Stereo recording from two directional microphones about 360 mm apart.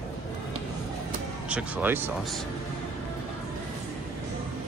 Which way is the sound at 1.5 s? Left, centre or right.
Centre.